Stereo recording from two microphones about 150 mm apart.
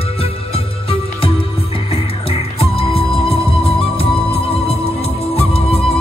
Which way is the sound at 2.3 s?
40° left (ahead or behind).